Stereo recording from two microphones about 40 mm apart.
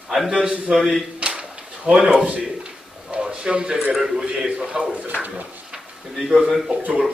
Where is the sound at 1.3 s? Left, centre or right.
Right.